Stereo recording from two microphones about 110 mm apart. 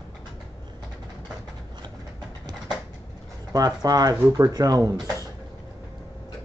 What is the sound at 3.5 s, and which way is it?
Speech, 35° right (ahead or behind).